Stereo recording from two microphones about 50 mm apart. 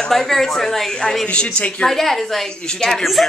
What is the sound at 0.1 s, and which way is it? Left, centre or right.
Speech, centre.